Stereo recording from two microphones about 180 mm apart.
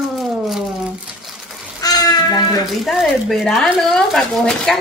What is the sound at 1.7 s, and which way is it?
Bathtub, 20° left (ahead or behind).